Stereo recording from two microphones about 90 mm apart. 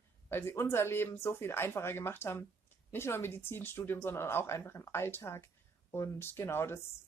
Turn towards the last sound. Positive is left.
turn(degrees=25)  # may be behind; listen again after turning